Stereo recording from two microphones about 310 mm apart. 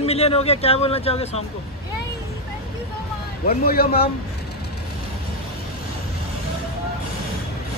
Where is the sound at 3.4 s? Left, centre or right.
Left.